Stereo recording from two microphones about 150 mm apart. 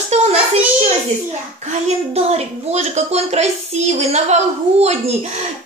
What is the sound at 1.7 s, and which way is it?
A woman's voice, 45° right (ahead or behind).